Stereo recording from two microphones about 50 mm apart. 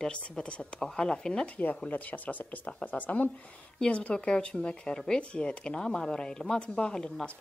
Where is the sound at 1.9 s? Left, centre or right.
Left; by 7.2 s centre.